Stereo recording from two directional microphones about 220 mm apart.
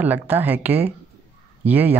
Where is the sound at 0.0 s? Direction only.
10° right (ahead or behind).